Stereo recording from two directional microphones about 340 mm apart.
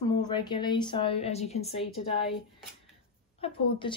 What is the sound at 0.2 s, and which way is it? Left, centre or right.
Speech, centre.